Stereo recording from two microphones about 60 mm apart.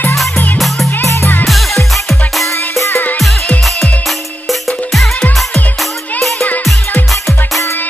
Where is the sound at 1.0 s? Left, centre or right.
Left.